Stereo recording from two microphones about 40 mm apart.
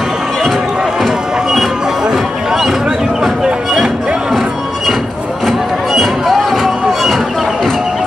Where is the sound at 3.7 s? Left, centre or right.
Centre.